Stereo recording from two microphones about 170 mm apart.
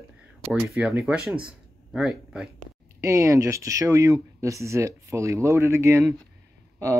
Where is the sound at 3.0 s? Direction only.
15° right (ahead or behind).